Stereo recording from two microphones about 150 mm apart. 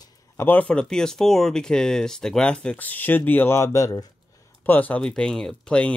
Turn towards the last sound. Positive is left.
turn(degrees=5)  # may be behind; listen again after turning